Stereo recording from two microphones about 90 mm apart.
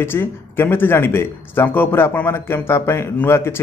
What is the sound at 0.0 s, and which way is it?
Speech, 25° left (ahead or behind).